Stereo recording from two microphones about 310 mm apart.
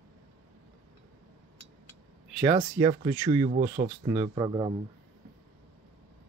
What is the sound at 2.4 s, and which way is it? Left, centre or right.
Speech, centre.